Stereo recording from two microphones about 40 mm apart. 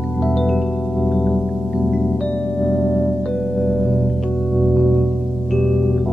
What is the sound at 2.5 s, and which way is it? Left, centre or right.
Singing bowl, centre.